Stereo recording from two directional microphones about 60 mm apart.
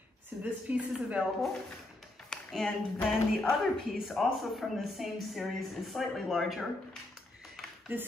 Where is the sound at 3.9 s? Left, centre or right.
Centre.